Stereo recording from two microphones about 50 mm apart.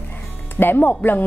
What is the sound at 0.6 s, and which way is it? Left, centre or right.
Speech, left.